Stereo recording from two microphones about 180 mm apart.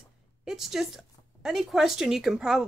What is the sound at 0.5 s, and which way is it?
A woman's voice, centre (ahead or behind).